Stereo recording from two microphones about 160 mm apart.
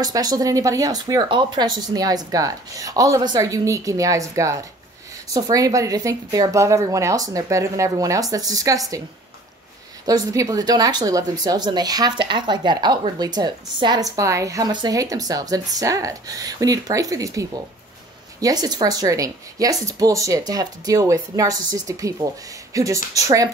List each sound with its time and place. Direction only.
0.0 s a woman's voice: 25° right (ahead or behind)
10.0 s a woman's voice: 20° right (ahead or behind)